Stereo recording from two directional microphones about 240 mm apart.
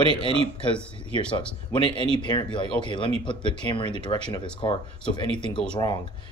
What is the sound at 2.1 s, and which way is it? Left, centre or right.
Speech, centre.